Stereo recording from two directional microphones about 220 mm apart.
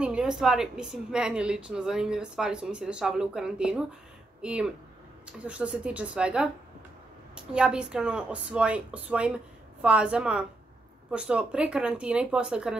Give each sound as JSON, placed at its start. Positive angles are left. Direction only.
{"t": 0.0, "sound": "speech", "side_deg": -5}